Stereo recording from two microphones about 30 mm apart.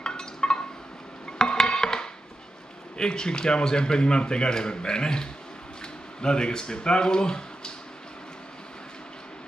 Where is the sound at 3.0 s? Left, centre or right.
Left.